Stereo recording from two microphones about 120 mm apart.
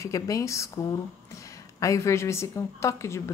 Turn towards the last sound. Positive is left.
turn(degrees=25)  # may be behind; listen again after turning